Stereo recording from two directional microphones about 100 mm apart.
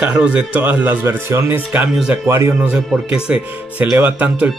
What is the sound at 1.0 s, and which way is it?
Speech, 30° right (ahead or behind).